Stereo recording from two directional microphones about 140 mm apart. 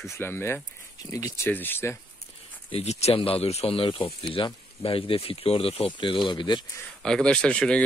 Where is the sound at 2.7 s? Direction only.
45° left (ahead or behind).